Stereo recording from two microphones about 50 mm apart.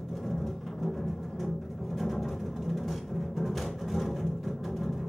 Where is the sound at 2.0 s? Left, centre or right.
Centre.